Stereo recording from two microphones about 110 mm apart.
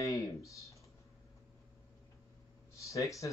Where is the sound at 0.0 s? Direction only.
35° left (ahead or behind).